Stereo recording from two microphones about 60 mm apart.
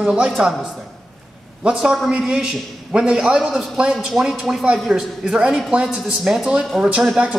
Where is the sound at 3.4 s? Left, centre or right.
Centre.